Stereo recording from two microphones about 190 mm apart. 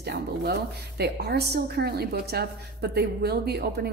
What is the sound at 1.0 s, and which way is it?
A woman's voice, 60° right (ahead or behind).